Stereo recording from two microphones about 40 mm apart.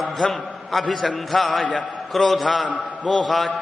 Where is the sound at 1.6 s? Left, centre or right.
Left.